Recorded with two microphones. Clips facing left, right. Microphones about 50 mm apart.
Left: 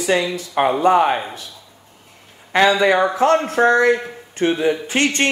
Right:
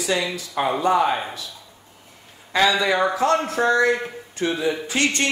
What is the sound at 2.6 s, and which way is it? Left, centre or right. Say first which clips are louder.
Speech: left 4 dB; left.